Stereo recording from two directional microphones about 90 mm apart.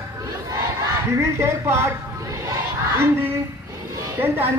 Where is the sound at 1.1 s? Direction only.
30° right (ahead or behind).